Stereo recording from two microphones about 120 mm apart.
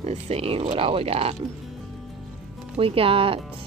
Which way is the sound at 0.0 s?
55° right (ahead or behind).